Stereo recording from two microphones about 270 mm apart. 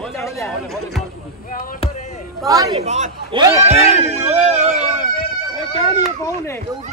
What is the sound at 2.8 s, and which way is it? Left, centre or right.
Speech, right.